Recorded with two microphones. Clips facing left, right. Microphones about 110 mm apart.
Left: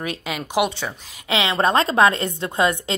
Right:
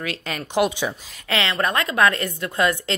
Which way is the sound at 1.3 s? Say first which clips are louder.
Left 4 dB; 20° left (ahead or behind).